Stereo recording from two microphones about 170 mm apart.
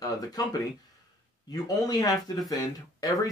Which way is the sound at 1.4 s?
20° left (ahead or behind).